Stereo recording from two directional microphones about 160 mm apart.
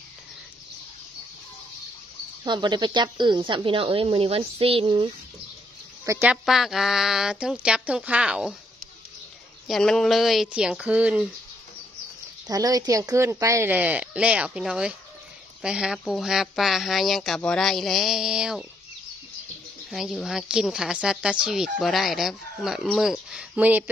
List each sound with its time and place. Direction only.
2.4 s speech: 30° right (ahead or behind)
6.0 s speech: 15° right (ahead or behind)
6.3 s speech: centre (ahead or behind)
9.7 s speech: 5° left (ahead or behind)
12.4 s speech: 25° right (ahead or behind); by 18.7 s 5° right (ahead or behind)
19.9 s speech: centre (ahead or behind)